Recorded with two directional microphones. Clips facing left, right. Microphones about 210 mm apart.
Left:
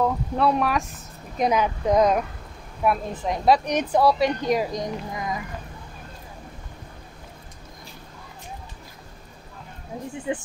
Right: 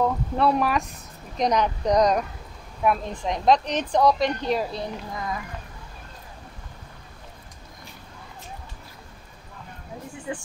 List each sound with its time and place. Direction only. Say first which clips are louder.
0.0 s speech: even; centre (ahead or behind)
10.3 s speech: left 5 dB; 20° left (ahead or behind)